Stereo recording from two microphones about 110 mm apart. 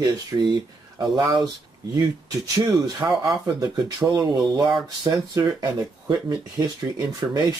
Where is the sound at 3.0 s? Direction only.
25° right (ahead or behind).